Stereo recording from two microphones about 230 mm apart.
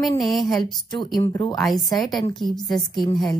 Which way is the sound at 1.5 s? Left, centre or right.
Centre.